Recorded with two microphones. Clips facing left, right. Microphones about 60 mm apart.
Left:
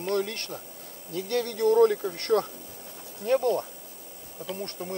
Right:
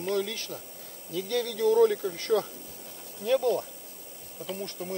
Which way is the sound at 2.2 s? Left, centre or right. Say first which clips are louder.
Left 2 dB; left.